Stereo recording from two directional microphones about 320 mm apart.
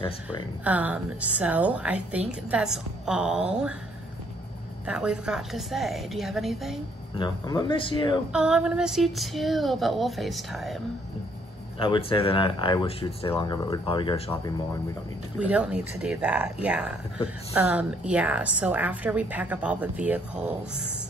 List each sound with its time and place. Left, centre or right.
0.7 s a woman's voice: centre
4.8 s a woman's voice: centre
7.2 s speech: centre
8.3 s a woman's voice: centre
11.8 s speech: centre
15.3 s a woman's voice: centre